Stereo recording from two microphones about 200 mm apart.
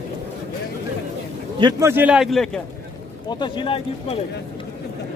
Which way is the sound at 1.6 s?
15° right (ahead or behind).